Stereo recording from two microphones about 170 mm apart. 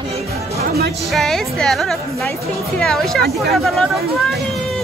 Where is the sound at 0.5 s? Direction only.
70° right (ahead or behind).